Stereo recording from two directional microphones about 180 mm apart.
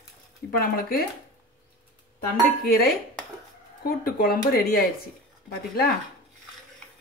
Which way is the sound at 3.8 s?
55° left (ahead or behind).